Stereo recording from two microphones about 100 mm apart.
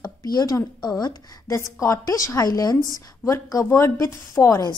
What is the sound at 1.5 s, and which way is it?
A woman's voice, 30° left (ahead or behind).